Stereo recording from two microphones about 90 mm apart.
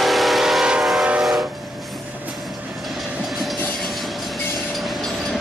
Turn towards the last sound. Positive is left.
turn(degrees=0)  # may be behind; listen again after turning